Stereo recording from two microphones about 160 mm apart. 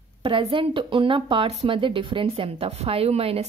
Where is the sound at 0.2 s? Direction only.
35° right (ahead or behind).